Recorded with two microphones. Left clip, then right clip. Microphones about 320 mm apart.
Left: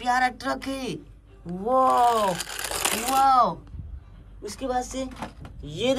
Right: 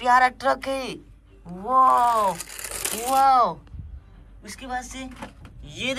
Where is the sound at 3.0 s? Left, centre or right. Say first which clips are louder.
Right 2 dB; centre.